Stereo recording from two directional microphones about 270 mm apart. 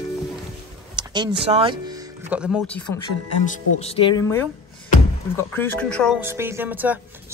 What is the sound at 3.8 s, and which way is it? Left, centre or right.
A man's voice, centre.